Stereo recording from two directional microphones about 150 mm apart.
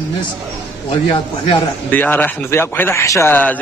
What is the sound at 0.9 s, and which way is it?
Speech, 30° left (ahead or behind).